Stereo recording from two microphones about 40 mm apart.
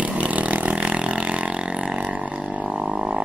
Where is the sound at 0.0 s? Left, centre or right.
Right.